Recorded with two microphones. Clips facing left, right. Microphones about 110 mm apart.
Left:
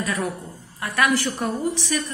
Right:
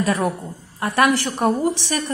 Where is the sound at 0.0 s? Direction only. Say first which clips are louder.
Right 5 dB; 30° right (ahead or behind).